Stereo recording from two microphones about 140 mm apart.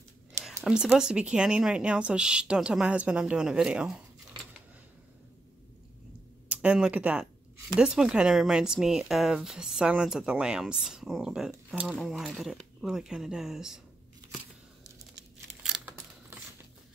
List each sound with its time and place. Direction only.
0.4 s a sound: 20° right (ahead or behind)
0.9 s a woman's voice: 5° right (ahead or behind)
6.5 s speech: 10° right (ahead or behind)
15.6 s crumpling: 5° right (ahead or behind)